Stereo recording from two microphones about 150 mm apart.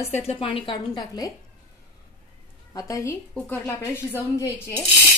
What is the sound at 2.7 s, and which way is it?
A woman's voice, 25° left (ahead or behind).